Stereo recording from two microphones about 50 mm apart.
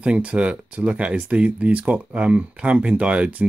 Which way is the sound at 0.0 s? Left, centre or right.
Right.